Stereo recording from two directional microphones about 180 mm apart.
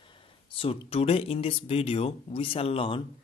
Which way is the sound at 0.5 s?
30° left (ahead or behind).